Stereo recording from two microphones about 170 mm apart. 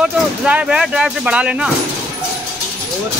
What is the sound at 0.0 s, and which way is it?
Speech, 5° right (ahead or behind).